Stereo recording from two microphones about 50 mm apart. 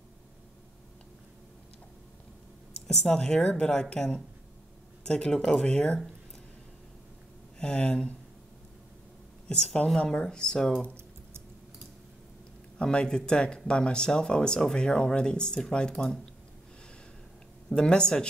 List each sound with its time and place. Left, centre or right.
2.7 s a sound: centre
3.1 s speech: centre
7.5 s speech: centre
9.5 s speech: centre
12.7 s speech: centre
17.6 s speech: centre